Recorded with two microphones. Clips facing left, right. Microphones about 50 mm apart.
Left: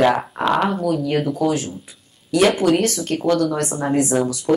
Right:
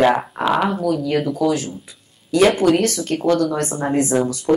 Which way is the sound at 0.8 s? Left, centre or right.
Left.